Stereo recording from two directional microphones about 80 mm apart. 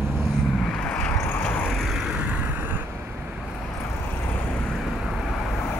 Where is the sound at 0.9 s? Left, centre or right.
Centre.